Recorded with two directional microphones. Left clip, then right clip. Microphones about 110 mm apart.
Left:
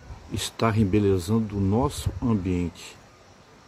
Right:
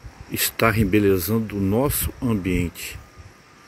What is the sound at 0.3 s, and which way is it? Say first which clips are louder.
Speech: right 6 dB; 5° right (ahead or behind).